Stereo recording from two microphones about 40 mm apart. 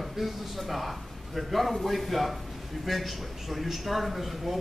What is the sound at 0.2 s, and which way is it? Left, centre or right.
Speech, centre.